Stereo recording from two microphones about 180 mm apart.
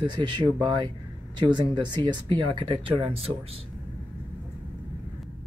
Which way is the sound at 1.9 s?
25° right (ahead or behind).